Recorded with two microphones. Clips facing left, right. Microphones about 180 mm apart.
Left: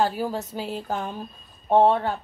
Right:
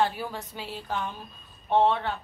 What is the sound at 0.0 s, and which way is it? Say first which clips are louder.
Speech: left 4 dB; 40° left (ahead or behind).